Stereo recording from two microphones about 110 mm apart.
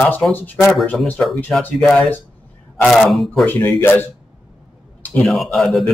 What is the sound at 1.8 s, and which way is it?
Speech, 5° left (ahead or behind).